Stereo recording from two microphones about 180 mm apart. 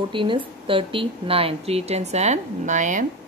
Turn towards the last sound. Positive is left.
turn(degrees=-45)  # may be behind; listen again after turning